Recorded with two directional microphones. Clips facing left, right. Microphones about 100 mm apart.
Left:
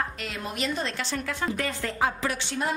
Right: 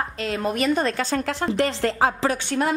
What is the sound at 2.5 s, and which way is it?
Speech, 65° right (ahead or behind).